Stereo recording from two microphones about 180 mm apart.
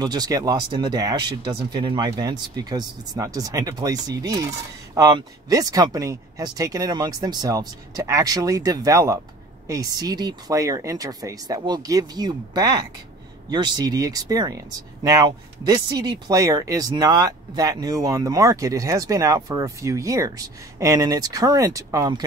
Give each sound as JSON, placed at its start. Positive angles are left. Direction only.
{"t": 0.0, "sound": "speech", "side_deg": -20}